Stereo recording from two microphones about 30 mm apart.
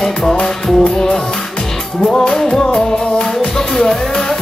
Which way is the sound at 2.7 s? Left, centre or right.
Left.